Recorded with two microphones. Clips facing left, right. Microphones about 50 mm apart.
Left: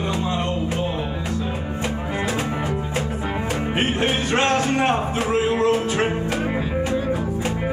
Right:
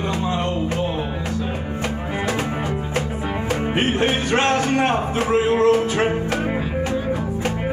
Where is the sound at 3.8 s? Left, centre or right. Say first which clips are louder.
Right 1 dB; right.